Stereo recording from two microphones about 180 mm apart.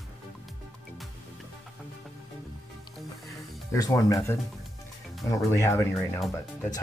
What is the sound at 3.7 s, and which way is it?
Speech, 20° left (ahead or behind).